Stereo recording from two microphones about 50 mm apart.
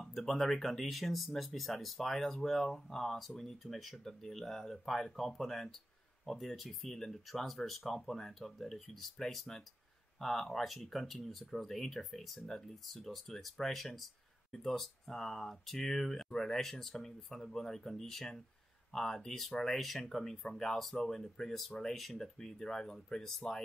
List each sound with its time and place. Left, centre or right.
0.0 s speech: centre